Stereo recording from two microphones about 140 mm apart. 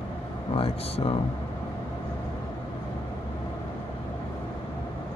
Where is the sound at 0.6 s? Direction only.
40° left (ahead or behind).